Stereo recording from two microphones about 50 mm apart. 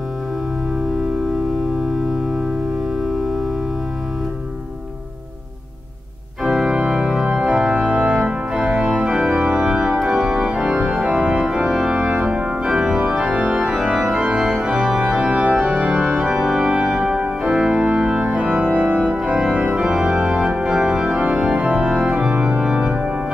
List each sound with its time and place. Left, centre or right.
6.4 s organ: centre
11.0 s organ: centre
11.9 s music: right
12.2 s organ: centre